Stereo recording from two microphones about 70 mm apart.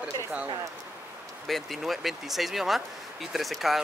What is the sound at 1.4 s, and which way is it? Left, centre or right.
Speech, centre.